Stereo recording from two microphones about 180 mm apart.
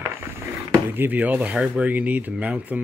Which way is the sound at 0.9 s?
10° right (ahead or behind).